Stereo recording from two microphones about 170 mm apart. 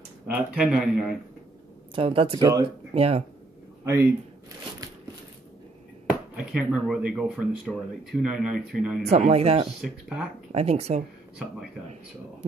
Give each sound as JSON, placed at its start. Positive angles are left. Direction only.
{"t": 0.3, "sound": "speech", "side_deg": -5}
{"t": 2.0, "sound": "speech", "side_deg": -30}
{"t": 3.8, "sound": "speech", "side_deg": -15}
{"t": 6.3, "sound": "speech", "side_deg": -5}
{"t": 9.0, "sound": "speech", "side_deg": -40}
{"t": 9.8, "sound": "speech", "side_deg": 0}
{"t": 10.5, "sound": "speech", "side_deg": -40}